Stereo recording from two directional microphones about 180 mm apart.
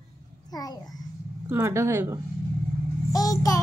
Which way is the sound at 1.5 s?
15° right (ahead or behind).